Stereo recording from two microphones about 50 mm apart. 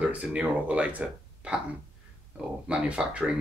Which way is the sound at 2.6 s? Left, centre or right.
Right.